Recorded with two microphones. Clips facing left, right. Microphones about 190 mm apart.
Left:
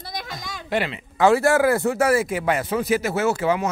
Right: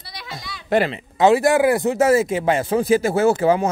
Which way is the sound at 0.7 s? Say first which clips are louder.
Right 6 dB; 40° right (ahead or behind).